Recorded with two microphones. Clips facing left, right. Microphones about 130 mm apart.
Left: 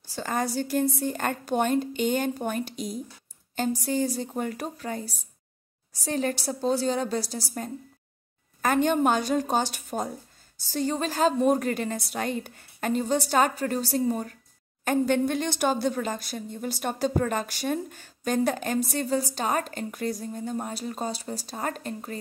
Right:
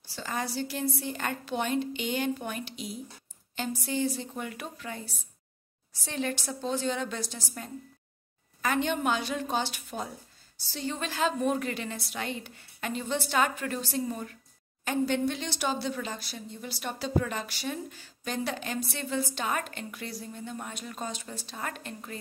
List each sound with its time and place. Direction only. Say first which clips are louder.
0.1 s a woman's voice: left 5 dB; 45° left (ahead or behind)
14.9 s a woman's voice: left 4 dB; 50° left (ahead or behind)